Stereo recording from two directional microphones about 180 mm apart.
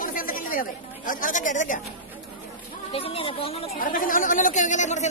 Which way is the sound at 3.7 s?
50° left (ahead or behind).